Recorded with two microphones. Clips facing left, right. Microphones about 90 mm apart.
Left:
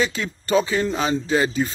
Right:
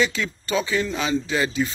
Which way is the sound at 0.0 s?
35° left (ahead or behind).